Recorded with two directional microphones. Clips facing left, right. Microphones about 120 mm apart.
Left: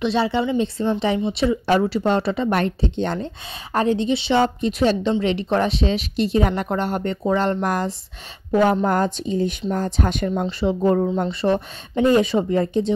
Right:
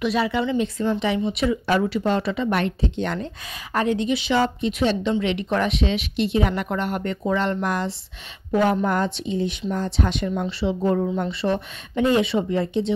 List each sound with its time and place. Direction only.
0.0 s a woman's voice: 30° left (ahead or behind)